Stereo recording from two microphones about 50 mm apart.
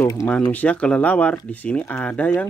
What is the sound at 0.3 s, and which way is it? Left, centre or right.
Speech, left.